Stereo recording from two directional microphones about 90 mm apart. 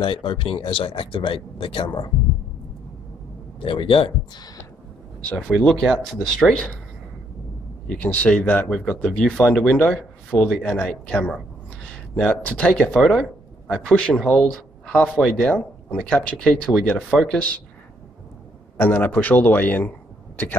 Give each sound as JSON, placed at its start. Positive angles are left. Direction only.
{"t": 0.0, "sound": "speech", "side_deg": 70}
{"t": 3.5, "sound": "a man's voice", "side_deg": 80}
{"t": 5.5, "sound": "speech", "side_deg": 5}
{"t": 7.9, "sound": "speech", "side_deg": 20}
{"t": 18.8, "sound": "a man's voice", "side_deg": 20}